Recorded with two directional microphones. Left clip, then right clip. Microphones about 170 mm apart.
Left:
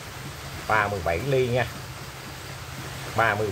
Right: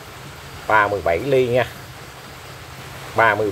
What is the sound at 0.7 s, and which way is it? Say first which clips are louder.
Speech: right 7 dB; 35° right (ahead or behind).